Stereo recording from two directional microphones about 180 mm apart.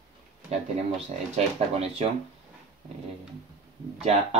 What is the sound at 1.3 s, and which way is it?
Speech, 35° right (ahead or behind).